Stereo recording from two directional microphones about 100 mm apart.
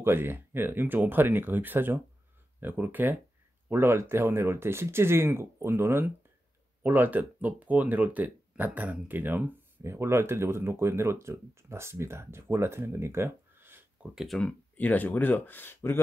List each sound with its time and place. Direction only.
0.0 s speech: 20° right (ahead or behind)
14.1 s speech: centre (ahead or behind)
14.8 s speech: 15° left (ahead or behind)